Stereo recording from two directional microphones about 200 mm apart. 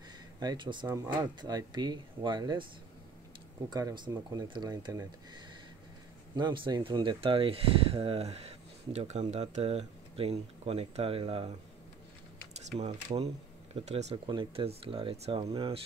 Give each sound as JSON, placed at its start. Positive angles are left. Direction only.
{"t": 0.4, "sound": "speech", "side_deg": -20}
{"t": 3.7, "sound": "speech", "side_deg": -20}
{"t": 12.5, "sound": "speech", "side_deg": -35}